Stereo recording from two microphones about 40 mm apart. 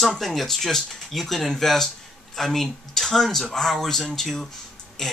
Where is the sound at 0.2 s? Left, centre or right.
Centre.